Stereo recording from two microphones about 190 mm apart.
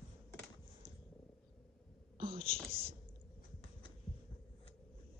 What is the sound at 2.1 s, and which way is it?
Whispering, 50° right (ahead or behind).